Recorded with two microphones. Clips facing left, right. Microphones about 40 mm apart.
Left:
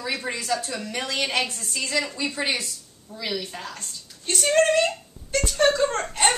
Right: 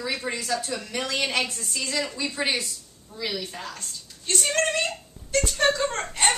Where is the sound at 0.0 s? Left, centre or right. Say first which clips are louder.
Even; centre.